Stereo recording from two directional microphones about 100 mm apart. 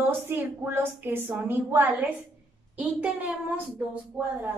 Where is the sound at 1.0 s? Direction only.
20° right (ahead or behind).